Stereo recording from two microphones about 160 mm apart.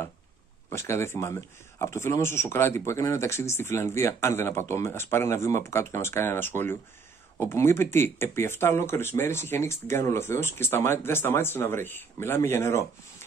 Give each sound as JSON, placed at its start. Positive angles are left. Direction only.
{"t": 0.7, "sound": "speech", "side_deg": 15}